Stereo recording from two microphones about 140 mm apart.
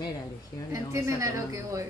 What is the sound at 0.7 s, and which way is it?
Speech, 20° right (ahead or behind).